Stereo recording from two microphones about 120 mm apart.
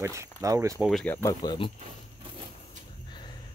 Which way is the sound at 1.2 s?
40° left (ahead or behind).